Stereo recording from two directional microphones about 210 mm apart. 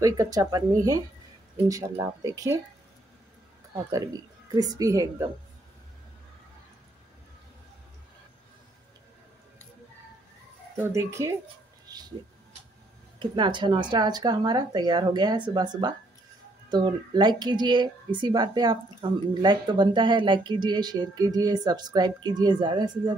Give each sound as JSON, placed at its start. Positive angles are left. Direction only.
{"t": 0.0, "sound": "speech", "side_deg": -15}
{"t": 3.9, "sound": "speech", "side_deg": -20}
{"t": 10.8, "sound": "speech", "side_deg": -10}
{"t": 11.9, "sound": "a sound", "side_deg": -20}
{"t": 13.2, "sound": "speech", "side_deg": -20}